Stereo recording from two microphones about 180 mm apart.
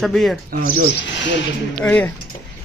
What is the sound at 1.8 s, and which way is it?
Speech, 10° left (ahead or behind).